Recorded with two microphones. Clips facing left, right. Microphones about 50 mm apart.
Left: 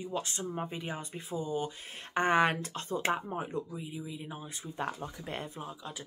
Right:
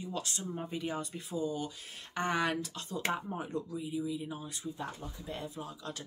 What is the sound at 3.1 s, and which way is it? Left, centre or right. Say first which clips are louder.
Speech: left 1 dB; left.